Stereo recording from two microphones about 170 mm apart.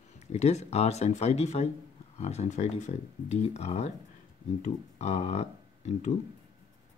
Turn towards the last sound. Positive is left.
turn(degrees=40)  # may be behind; listen again after turning